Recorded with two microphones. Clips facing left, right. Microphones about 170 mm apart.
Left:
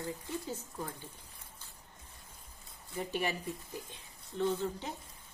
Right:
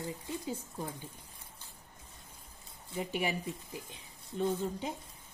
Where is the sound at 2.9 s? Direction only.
15° right (ahead or behind).